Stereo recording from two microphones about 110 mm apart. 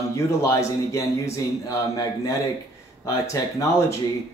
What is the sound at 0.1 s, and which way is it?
Speech, 30° left (ahead or behind).